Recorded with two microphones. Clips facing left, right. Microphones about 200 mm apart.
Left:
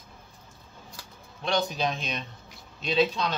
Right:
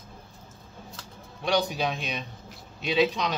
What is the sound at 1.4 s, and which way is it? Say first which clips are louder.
Speech: right 1 dB; 10° right (ahead or behind).